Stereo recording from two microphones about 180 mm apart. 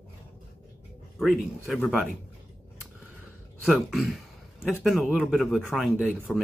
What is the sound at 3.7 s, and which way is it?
Speech, centre (ahead or behind).